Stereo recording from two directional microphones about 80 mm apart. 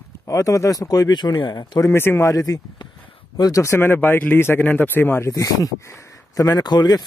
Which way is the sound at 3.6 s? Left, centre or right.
Left.